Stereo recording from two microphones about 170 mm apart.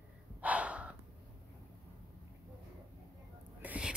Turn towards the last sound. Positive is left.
turn(degrees=-5)  # may be behind; listen again after turning